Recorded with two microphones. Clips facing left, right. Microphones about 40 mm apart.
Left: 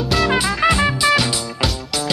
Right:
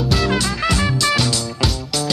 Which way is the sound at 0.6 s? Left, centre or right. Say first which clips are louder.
Left 3 dB; left.